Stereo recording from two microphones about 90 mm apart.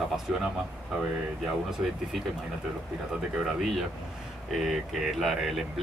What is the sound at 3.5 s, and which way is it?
Speech, centre (ahead or behind).